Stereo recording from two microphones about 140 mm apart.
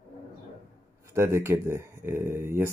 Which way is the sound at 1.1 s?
20° right (ahead or behind).